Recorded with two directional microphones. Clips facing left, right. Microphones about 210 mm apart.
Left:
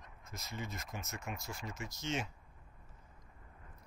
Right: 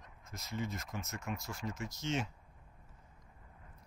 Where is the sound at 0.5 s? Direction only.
15° left (ahead or behind).